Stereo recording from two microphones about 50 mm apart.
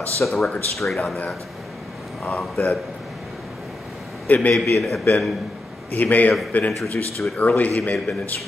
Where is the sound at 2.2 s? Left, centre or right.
Centre.